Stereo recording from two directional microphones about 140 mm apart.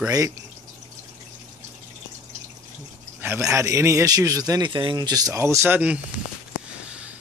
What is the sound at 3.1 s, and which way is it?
A man's voice, 15° right (ahead or behind).